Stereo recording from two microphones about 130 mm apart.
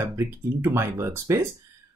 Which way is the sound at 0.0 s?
20° right (ahead or behind).